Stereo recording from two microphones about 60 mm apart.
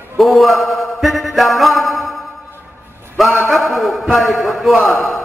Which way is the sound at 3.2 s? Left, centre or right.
Centre.